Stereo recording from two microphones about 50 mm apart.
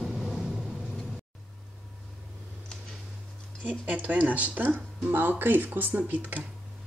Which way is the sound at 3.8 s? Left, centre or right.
Right.